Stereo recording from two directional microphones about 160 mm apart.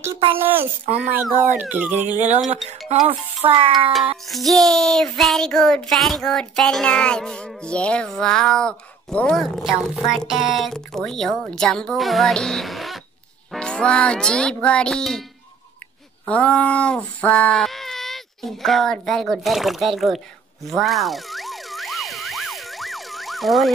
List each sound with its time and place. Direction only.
0.4 s speech: 15° right (ahead or behind)
2.0 s speech: 45° right (ahead or behind)
3.4 s music: 35° right (ahead or behind)
4.3 s child singing: centre (ahead or behind)
16.3 s child singing: 5° left (ahead or behind)
20.6 s emergency vehicle: centre (ahead or behind)